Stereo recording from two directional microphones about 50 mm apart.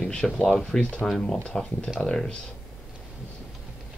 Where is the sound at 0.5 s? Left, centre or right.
Centre.